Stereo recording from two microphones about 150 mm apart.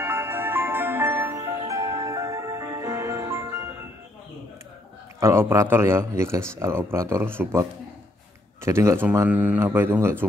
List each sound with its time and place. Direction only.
0.0 s music: 15° right (ahead or behind)
5.2 s speech: 15° right (ahead or behind)
8.6 s speech: 20° right (ahead or behind)